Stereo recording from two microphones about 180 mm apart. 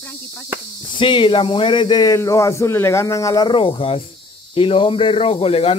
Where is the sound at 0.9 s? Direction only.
25° left (ahead or behind).